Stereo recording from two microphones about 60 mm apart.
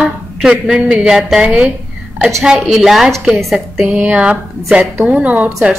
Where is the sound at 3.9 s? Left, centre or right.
Right.